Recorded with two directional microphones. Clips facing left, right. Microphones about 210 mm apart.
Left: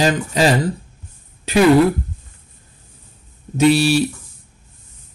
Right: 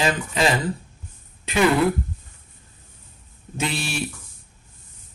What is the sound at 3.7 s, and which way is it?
Speech, 35° left (ahead or behind).